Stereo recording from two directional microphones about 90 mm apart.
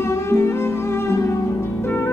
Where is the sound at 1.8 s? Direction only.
25° left (ahead or behind).